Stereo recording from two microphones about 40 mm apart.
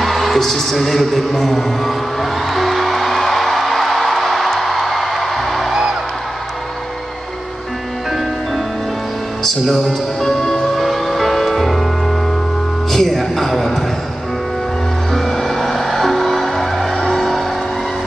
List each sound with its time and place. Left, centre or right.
0.0 s music: centre
5.7 s music: centre
9.4 s music: centre
12.9 s a sound: centre
15.1 s music: centre
17.1 s vehicle: centre